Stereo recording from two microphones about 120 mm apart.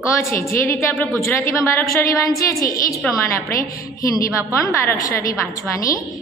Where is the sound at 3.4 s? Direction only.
25° left (ahead or behind).